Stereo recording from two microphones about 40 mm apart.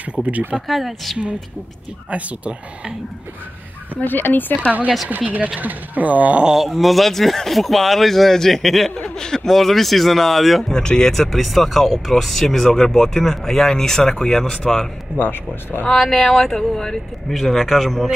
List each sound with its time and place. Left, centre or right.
0.0 s speech: right
0.7 s speech: centre
2.0 s speech: right
4.0 s speech: left
4.6 s speech: right
6.4 s speech: centre
6.7 s speech: centre
8.9 s speech: centre
9.5 s speech: centre
10.7 s speech: centre
11.1 s speech: centre
15.1 s speech: left
15.9 s speech: centre
17.4 s speech: centre